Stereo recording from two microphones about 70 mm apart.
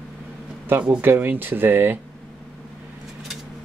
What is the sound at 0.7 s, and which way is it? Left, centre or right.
Speech, right.